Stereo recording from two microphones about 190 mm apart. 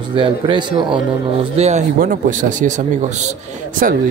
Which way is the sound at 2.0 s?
45° right (ahead or behind).